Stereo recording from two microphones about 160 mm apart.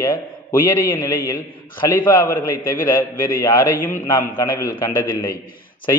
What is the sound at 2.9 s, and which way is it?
A man's voice, 15° left (ahead or behind).